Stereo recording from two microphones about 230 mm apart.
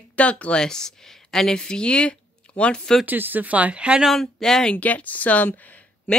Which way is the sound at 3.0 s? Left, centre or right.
Centre.